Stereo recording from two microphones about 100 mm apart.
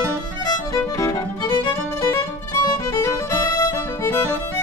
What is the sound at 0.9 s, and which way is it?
Music, 35° left (ahead or behind).